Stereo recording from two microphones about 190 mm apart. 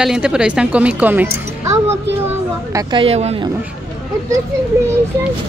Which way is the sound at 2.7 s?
25° right (ahead or behind).